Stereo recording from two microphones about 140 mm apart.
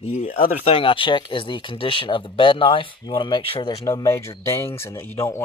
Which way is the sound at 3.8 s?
20° left (ahead or behind).